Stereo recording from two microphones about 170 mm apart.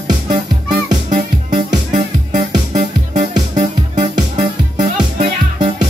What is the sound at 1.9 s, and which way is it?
Music, 45° right (ahead or behind).